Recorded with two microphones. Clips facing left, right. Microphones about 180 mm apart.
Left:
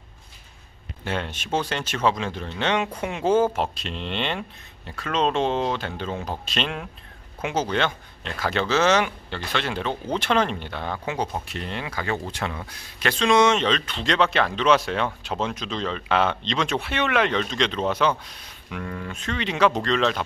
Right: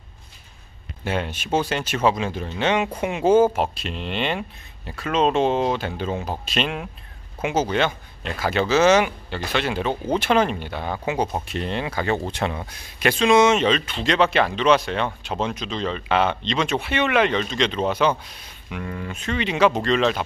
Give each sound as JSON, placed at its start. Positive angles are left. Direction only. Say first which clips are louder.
{"t": 1.0, "sound": "speech", "louder": "right 3 dB", "side_deg": -10}
{"t": 11.5, "sound": "speech", "louder": "right 5 dB", "side_deg": -25}
{"t": 13.1, "sound": "speech", "louder": "right 2 dB", "side_deg": -5}